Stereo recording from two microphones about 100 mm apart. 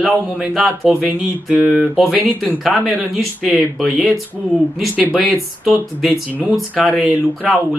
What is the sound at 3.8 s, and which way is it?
Speech, 5° right (ahead or behind).